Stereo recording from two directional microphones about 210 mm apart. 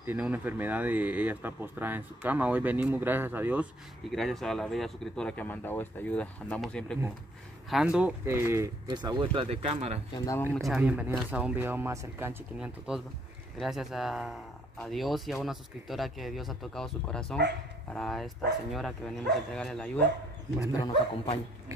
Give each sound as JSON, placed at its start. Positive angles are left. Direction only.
{"t": 0.0, "sound": "speech", "side_deg": -10}
{"t": 4.1, "sound": "speech", "side_deg": 0}
{"t": 10.1, "sound": "speech", "side_deg": 15}
{"t": 10.6, "sound": "speech", "side_deg": -5}
{"t": 20.8, "sound": "speech", "side_deg": 25}